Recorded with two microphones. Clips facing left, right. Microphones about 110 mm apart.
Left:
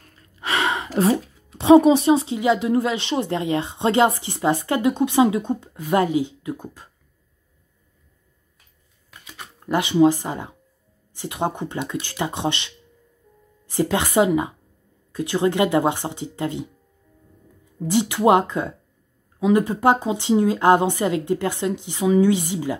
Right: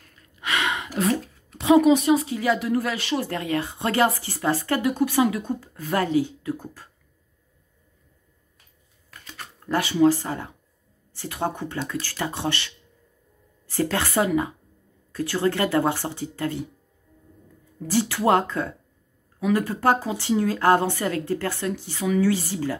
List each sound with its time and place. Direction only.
0.4 s gasp: 35° left (ahead or behind)
1.1 s a sound: centre (ahead or behind)
1.6 s a woman's voice: 30° left (ahead or behind)
9.1 s typing: 10° left (ahead or behind)
11.1 s a woman's voice: 20° left (ahead or behind)
17.7 s a woman's voice: 20° left (ahead or behind)